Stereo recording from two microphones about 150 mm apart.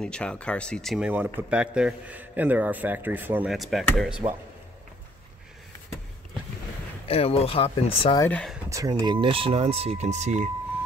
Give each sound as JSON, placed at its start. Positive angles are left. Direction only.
{"t": 0.0, "sound": "speech", "side_deg": 5}
{"t": 0.9, "sound": "a man's voice", "side_deg": -10}
{"t": 3.5, "sound": "speech", "side_deg": 0}
{"t": 7.1, "sound": "speech", "side_deg": 40}
{"t": 8.2, "sound": "speech", "side_deg": 10}
{"t": 8.6, "sound": "speech", "side_deg": -25}